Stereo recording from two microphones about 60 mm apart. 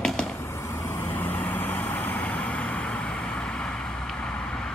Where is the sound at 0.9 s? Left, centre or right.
Left; by 4.7 s centre.